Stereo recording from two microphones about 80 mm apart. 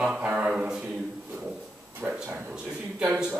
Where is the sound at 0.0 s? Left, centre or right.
Centre.